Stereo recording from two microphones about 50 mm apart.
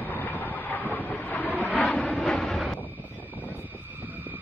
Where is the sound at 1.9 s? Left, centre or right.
Centre.